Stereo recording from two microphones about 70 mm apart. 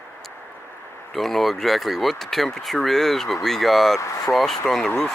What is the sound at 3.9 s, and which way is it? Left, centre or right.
Speech, left.